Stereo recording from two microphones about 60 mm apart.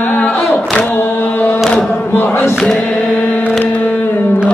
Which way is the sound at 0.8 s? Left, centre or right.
Left.